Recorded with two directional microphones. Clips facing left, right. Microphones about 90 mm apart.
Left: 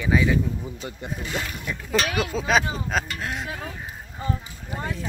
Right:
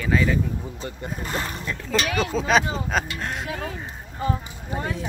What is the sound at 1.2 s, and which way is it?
Speech, 40° right (ahead or behind).